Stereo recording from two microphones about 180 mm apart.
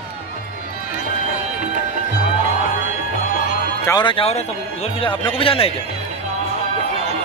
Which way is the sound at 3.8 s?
25° left (ahead or behind).